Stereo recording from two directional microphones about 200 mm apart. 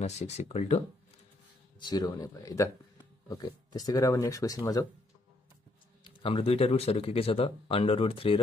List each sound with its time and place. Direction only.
0.0 s speech: 30° left (ahead or behind)
1.8 s speech: 20° left (ahead or behind)
6.0 s speech: 25° left (ahead or behind)